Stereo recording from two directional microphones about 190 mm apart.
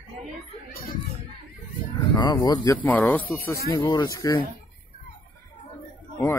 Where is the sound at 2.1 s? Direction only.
20° left (ahead or behind).